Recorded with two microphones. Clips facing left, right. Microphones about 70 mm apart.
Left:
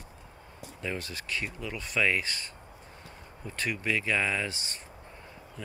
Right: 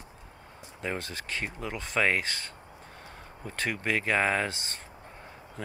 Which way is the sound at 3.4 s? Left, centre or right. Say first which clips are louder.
Right 1 dB; right.